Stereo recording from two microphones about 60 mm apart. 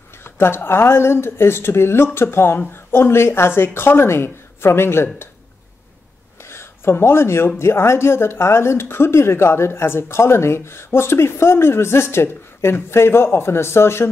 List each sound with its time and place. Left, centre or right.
0.2 s a woman's voice: left
6.5 s a woman's voice: left